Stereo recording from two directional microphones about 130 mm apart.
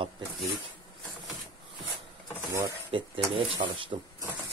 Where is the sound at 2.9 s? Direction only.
40° right (ahead or behind).